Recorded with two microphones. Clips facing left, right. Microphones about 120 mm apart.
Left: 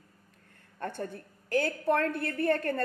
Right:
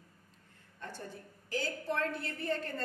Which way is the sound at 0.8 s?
60° left (ahead or behind).